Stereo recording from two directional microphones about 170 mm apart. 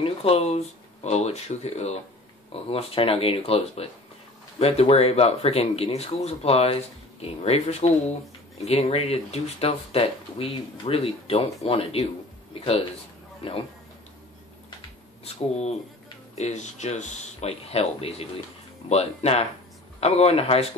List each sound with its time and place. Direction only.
0.0 s speech: 35° left (ahead or behind)
16.3 s speech: 45° left (ahead or behind)